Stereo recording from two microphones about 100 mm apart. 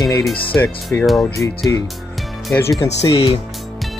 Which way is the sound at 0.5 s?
20° left (ahead or behind).